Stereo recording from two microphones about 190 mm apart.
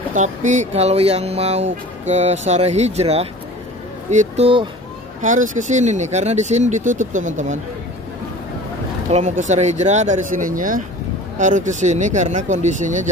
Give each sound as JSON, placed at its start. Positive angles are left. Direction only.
{"t": 0.1, "sound": "speech", "side_deg": -40}
{"t": 5.2, "sound": "speech", "side_deg": -40}
{"t": 9.1, "sound": "speech", "side_deg": -40}